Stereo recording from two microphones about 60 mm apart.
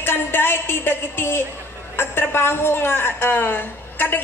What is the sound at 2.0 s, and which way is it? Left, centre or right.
A woman's voice, left.